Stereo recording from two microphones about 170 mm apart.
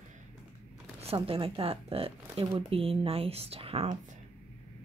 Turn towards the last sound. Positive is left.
turn(degrees=-35)  # may be behind; listen again after turning